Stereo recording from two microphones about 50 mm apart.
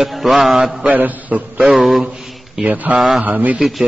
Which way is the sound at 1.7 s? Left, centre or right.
Centre.